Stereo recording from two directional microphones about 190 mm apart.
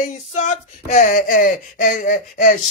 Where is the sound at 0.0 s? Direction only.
35° left (ahead or behind).